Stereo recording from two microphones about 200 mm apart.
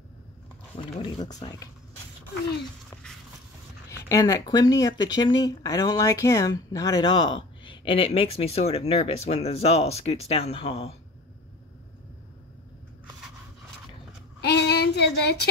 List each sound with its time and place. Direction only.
1.0 s speech: 20° left (ahead or behind)
4.1 s speech: 15° left (ahead or behind); by 10.9 s 35° left (ahead or behind)
14.4 s child singing: 55° left (ahead or behind)